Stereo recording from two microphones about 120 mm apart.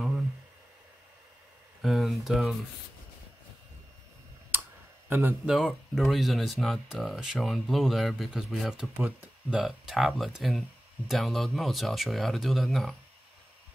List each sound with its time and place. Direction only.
1.8 s speech: centre (ahead or behind)
4.5 s clicking: 15° right (ahead or behind)
5.1 s speech: 15° right (ahead or behind)
5.5 s speech: centre (ahead or behind)
8.9 s speech: 15° right (ahead or behind)
9.6 s speech: centre (ahead or behind)